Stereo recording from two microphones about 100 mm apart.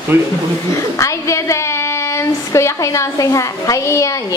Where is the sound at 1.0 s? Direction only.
30° left (ahead or behind).